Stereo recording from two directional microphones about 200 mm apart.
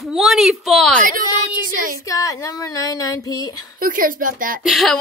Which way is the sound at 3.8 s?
45° right (ahead or behind).